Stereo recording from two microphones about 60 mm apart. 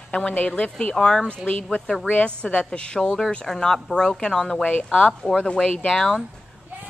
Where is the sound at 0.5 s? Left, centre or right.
Centre.